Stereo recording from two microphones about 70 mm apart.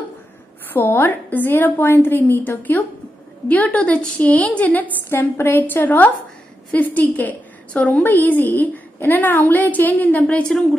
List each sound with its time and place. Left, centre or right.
0.7 s a woman's voice: left